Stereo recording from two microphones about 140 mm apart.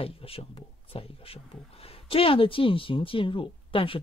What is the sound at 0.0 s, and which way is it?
Speech, 40° left (ahead or behind).